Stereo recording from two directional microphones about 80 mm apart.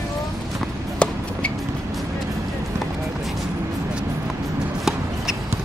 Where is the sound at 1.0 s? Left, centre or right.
Centre.